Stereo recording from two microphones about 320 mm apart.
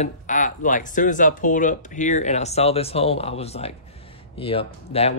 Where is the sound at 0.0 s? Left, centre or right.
Left.